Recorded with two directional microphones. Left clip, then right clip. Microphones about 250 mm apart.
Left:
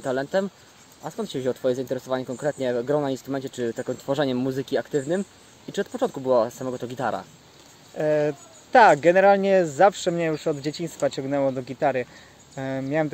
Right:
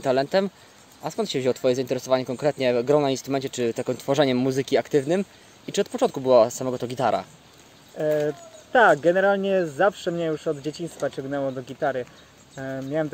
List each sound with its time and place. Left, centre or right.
0.0 s speech: right
8.0 s speech: left